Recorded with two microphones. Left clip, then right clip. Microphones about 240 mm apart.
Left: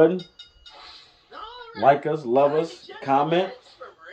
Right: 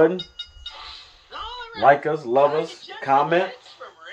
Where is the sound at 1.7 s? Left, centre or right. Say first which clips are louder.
Right 2 dB; right.